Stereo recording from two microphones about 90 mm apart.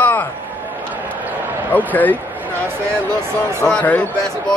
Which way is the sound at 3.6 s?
15° left (ahead or behind).